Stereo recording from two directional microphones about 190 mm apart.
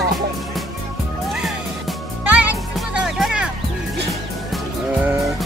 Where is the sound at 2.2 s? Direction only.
10° right (ahead or behind).